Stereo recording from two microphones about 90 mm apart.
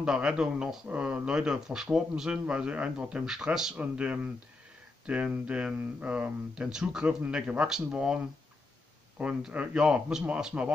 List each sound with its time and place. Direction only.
0.0 s speech: 10° right (ahead or behind)